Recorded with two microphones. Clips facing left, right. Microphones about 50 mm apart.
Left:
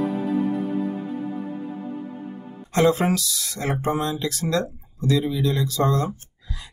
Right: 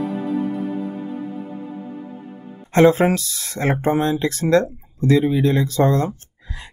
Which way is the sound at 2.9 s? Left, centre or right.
Right.